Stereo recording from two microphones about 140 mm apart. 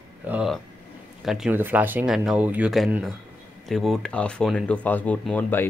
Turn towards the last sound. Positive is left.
turn(degrees=15)  # may be behind; listen again after turning